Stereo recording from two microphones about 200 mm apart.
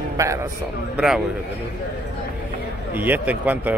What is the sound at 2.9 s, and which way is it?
Speech, 10° right (ahead or behind).